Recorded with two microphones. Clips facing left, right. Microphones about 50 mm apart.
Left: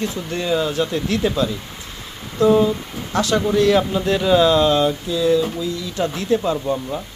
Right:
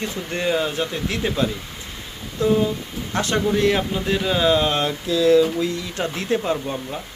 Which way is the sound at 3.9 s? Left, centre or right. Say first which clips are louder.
Left 5 dB; centre.